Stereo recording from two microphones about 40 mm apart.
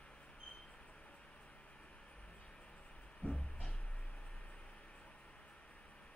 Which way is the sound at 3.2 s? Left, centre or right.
Left.